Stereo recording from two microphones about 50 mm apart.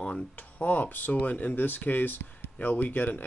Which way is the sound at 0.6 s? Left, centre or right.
Left.